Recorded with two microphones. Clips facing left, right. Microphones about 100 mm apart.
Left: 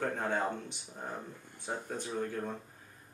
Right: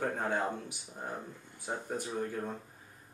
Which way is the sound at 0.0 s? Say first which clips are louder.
Even; 10° right (ahead or behind).